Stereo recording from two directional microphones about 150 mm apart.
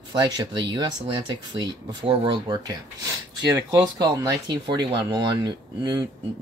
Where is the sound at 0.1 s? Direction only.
30° right (ahead or behind).